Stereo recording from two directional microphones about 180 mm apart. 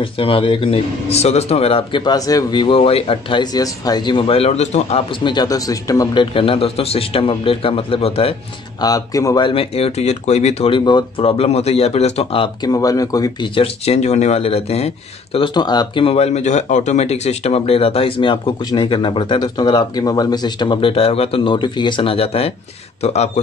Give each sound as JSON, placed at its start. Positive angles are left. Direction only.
{"t": 0.0, "sound": "speech", "side_deg": 30}
{"t": 5.2, "sound": "speech", "side_deg": 25}
{"t": 8.8, "sound": "speech", "side_deg": 20}